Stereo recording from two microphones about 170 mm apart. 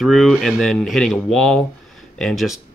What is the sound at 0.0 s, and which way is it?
Speech, centre (ahead or behind).